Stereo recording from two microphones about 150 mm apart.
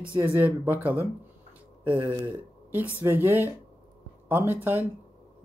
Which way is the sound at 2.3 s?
10° right (ahead or behind).